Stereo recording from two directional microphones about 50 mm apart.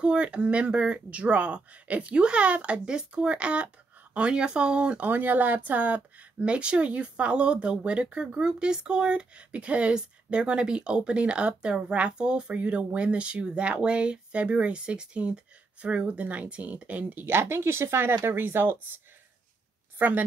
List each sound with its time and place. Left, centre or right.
0.0 s speech: right
5.0 s speech: right
17.2 s speech: right
20.0 s a woman's voice: right